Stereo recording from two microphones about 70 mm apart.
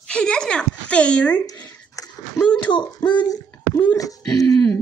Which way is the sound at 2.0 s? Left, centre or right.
Left.